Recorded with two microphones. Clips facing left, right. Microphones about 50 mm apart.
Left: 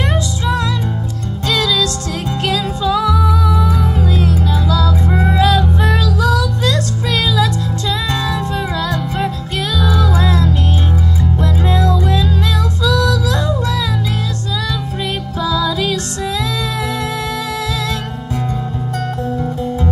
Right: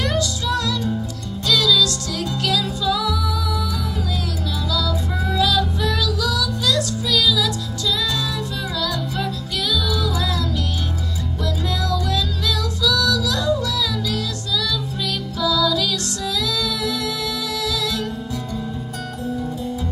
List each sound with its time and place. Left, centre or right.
1.5 s music: left
9.8 s music: left
15.4 s music: left